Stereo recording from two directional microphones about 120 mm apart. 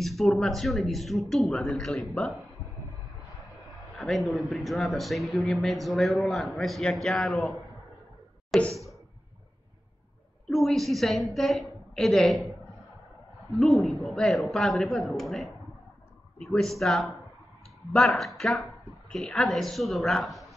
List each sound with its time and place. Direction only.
0.0 s speech: centre (ahead or behind)
4.0 s speech: centre (ahead or behind)
10.5 s speech: centre (ahead or behind)
13.6 s speech: centre (ahead or behind)